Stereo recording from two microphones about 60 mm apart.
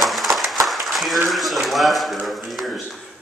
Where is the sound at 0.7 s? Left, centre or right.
Centre.